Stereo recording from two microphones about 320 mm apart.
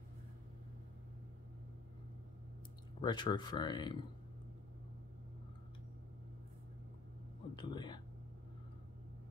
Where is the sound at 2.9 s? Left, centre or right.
Centre.